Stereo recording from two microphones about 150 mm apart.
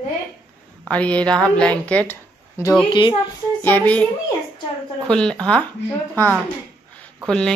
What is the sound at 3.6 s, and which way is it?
Speech, 10° left (ahead or behind).